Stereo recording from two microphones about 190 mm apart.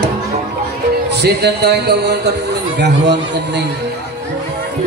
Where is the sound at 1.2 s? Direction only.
60° right (ahead or behind).